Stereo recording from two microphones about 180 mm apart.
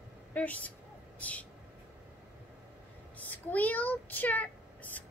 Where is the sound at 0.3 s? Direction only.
10° left (ahead or behind).